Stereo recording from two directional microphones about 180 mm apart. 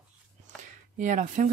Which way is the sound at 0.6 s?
45° right (ahead or behind).